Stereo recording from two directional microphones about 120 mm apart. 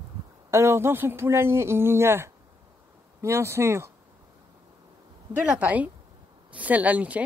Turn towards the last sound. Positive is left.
turn(degrees=-10)  # may be behind; listen again after turning